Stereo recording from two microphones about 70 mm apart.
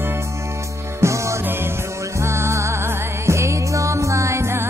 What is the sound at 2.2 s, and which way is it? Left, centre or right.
Music, right.